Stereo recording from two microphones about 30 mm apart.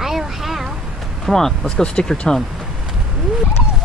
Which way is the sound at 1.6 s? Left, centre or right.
Left.